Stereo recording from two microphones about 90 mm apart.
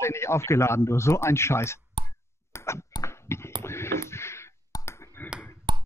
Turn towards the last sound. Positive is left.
turn(degrees=-60)  # may be behind; listen again after turning